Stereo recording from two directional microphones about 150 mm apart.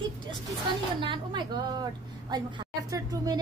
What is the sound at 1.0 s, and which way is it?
Speech, 30° right (ahead or behind).